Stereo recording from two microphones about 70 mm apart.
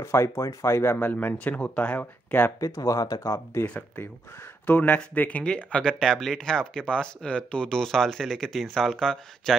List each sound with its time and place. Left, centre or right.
0.0 s speech: left
0.9 s speech: left
2.6 s speech: left
4.6 s speech: centre